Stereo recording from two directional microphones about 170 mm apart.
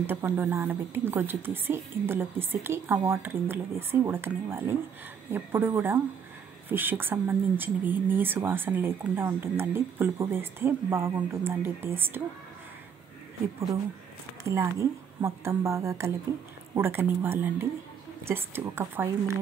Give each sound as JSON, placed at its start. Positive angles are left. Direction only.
{"t": 0.0, "sound": "speech", "side_deg": -10}
{"t": 14.4, "sound": "speech", "side_deg": -15}